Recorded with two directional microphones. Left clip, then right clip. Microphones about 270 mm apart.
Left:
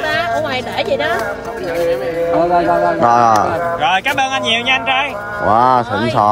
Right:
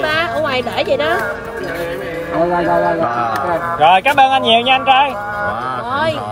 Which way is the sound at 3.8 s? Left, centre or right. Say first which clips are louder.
Right 7 dB; centre.